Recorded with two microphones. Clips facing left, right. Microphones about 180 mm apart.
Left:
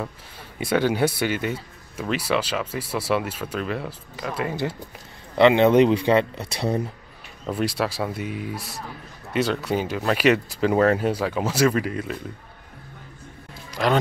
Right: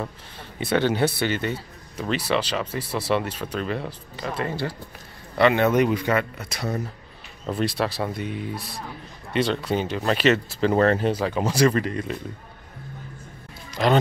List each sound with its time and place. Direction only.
0.6 s speech: 10° left (ahead or behind)
5.4 s speech: 20° left (ahead or behind)
7.5 s speech: 10° left (ahead or behind)